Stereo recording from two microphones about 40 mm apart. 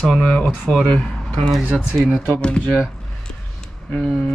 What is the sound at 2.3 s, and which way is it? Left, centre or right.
Speech, left.